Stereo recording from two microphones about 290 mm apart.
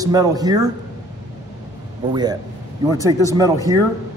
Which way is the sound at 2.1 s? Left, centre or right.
Centre.